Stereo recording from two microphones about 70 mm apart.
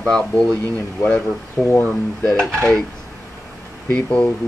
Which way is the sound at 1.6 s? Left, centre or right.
Left.